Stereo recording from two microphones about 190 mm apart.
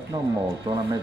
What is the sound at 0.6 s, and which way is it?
Speech, 25° right (ahead or behind).